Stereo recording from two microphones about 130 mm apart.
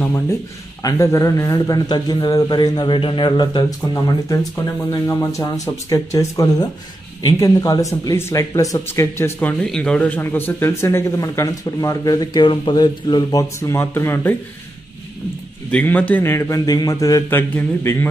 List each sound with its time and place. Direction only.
0.8 s a man's voice: 25° left (ahead or behind)
15.7 s speech: 10° left (ahead or behind)